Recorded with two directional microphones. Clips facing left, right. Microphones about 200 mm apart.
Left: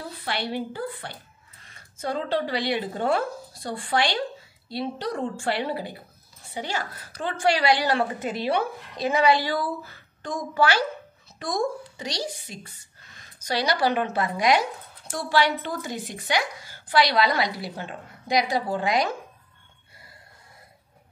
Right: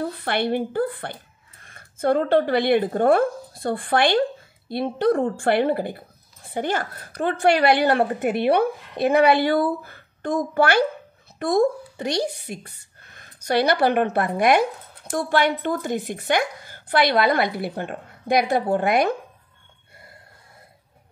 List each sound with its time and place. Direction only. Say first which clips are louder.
0.0 s a woman's voice: right 7 dB; 55° right (ahead or behind)